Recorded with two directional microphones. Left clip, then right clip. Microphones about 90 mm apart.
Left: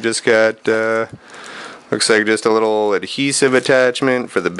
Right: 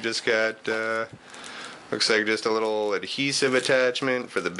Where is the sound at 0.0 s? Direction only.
35° left (ahead or behind).